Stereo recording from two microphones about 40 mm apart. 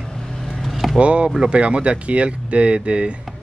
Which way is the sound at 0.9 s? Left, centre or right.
Right.